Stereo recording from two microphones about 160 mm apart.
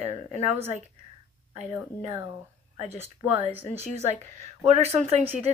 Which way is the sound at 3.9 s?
45° right (ahead or behind).